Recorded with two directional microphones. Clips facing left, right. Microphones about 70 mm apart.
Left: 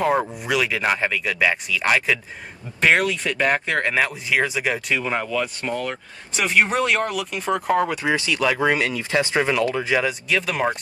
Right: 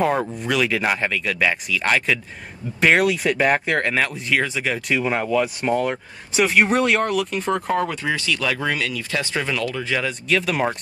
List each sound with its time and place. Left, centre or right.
0.0 s speech: centre
4.8 s speech: centre
6.3 s speech: centre
10.2 s speech: centre